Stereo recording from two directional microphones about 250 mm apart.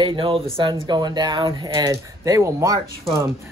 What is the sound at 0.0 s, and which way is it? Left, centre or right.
Speech, centre.